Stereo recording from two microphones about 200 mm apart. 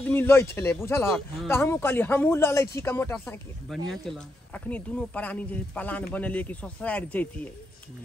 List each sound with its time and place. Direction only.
0.1 s speech: 10° left (ahead or behind)
3.9 s speech: centre (ahead or behind)